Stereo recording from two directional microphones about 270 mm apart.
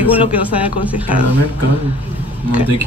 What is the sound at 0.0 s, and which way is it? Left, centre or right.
Speech, centre.